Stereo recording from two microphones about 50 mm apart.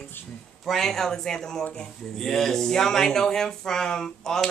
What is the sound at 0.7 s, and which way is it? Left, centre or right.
A woman's voice, centre.